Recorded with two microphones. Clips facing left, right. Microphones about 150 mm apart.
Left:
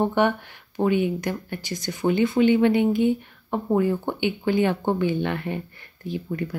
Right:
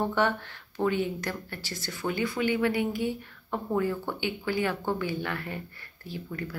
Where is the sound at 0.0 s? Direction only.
20° left (ahead or behind).